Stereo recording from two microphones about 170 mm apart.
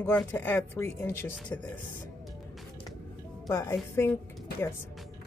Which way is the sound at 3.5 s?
15° left (ahead or behind).